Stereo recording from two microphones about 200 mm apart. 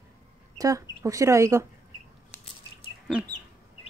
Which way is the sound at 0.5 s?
15° right (ahead or behind).